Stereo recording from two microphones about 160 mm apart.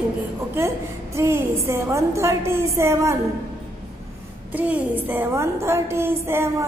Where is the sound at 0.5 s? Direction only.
15° right (ahead or behind).